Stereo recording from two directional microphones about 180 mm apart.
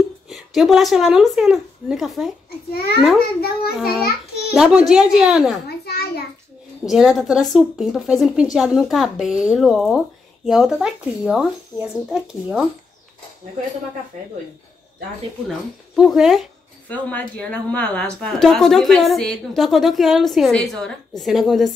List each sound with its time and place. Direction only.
0.3 s a woman's voice: centre (ahead or behind)
2.7 s a child's voice: 55° left (ahead or behind)
4.0 s a sound: 60° left (ahead or behind)
4.6 s speech: 5° right (ahead or behind)
5.7 s a sound: 65° left (ahead or behind)
6.9 s speech: centre (ahead or behind)
16.0 s speech: centre (ahead or behind)